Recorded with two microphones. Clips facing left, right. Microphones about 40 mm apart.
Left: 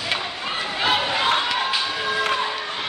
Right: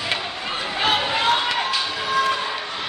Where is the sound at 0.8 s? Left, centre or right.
Centre.